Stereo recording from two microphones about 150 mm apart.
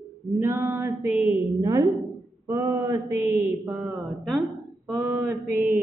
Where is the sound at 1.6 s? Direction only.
25° right (ahead or behind).